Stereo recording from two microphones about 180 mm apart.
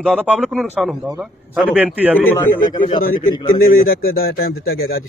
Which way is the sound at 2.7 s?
25° left (ahead or behind).